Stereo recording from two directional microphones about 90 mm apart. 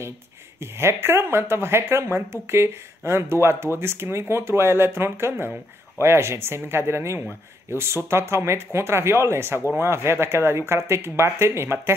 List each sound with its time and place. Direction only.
0.6 s speech: 30° right (ahead or behind)